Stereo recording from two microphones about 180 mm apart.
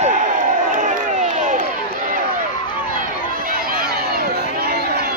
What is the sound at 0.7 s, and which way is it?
Crowd, 45° right (ahead or behind).